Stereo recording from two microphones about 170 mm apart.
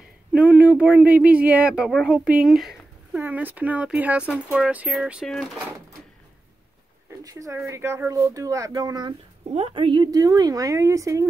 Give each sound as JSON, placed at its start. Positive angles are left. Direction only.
{"t": 0.3, "sound": "speech", "side_deg": -10}
{"t": 7.2, "sound": "speech", "side_deg": -20}
{"t": 9.5, "sound": "speech", "side_deg": -35}